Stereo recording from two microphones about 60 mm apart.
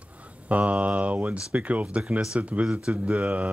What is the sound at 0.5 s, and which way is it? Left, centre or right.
Speech, right.